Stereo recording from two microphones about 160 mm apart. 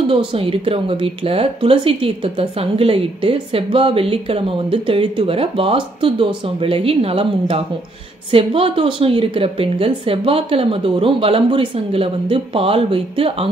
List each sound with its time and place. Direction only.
0.1 s speech: 35° right (ahead or behind)